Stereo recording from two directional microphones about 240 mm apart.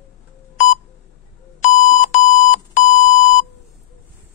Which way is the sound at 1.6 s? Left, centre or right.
Left.